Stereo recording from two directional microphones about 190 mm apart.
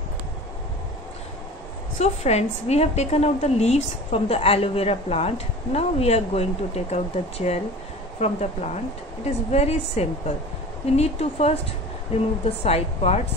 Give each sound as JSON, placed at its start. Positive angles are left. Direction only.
{"t": 2.0, "sound": "a woman's voice", "side_deg": 35}